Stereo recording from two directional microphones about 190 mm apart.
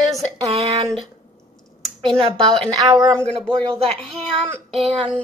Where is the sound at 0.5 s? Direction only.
30° right (ahead or behind).